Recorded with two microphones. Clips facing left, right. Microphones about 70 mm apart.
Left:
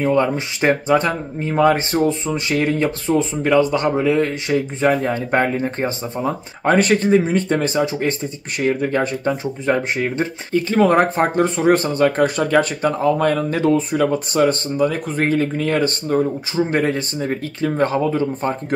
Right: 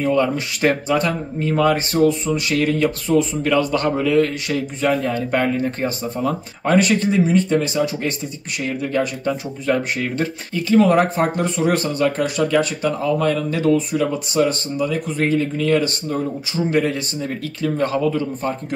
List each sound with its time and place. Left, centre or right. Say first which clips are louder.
0.0 s speech: left 1 dB; left
10.5 s speech: even; left